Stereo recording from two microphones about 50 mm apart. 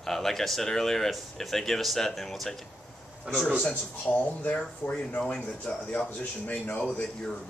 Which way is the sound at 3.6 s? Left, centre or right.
Left.